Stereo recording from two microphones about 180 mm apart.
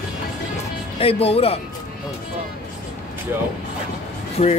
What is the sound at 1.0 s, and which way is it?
Speech, 35° left (ahead or behind).